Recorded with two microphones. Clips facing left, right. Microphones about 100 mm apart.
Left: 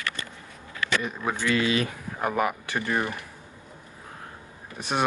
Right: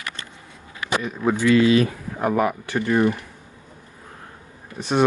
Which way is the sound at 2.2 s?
25° right (ahead or behind).